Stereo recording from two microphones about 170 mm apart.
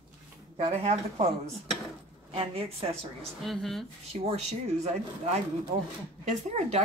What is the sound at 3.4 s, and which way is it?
Speech, centre (ahead or behind).